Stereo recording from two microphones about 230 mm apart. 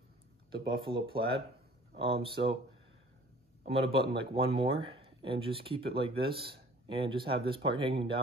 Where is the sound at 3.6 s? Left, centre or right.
Right.